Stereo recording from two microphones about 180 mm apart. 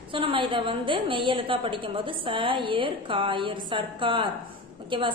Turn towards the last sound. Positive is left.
turn(degrees=-30)  # may be behind; listen again after turning